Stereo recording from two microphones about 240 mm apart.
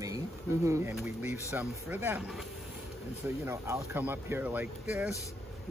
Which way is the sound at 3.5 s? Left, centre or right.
Centre.